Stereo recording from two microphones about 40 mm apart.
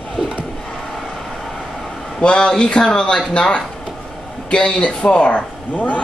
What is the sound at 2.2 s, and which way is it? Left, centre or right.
A man's voice, left.